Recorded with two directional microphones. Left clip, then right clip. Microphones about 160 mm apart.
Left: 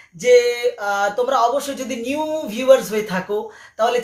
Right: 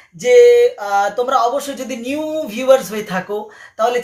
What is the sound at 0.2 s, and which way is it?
Speech, 15° right (ahead or behind).